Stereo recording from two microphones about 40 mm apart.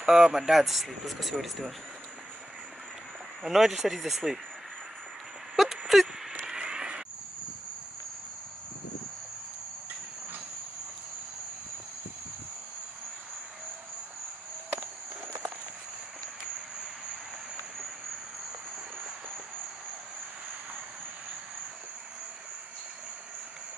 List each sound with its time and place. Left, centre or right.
0.0 s speech: centre
3.4 s speech: centre
5.6 s a sound: centre
6.4 s vehicle: right